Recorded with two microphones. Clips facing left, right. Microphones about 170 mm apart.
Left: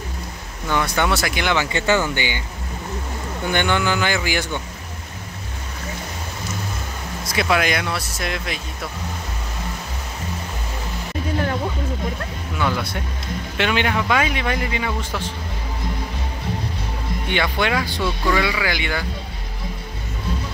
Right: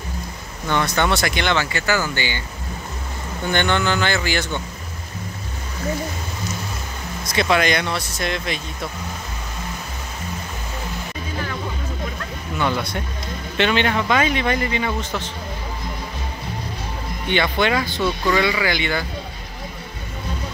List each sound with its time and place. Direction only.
0.7 s speech: 10° left (ahead or behind)
1.7 s speech: 25° left (ahead or behind)
3.5 s speech: 10° left (ahead or behind)
7.3 s speech: 5° left (ahead or behind)
12.5 s speech: 5° left (ahead or behind)
17.3 s speech: 10° left (ahead or behind)